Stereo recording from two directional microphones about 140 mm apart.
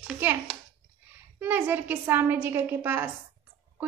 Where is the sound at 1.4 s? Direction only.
15° right (ahead or behind).